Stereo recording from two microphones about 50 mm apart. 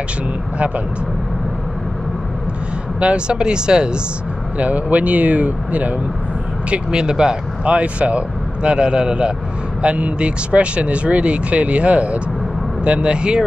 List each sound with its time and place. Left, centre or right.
3.0 s speech: right
4.6 s speech: right
6.7 s speech: centre